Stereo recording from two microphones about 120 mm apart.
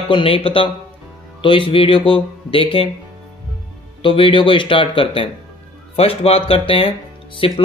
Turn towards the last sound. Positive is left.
turn(degrees=50)  # may be behind; listen again after turning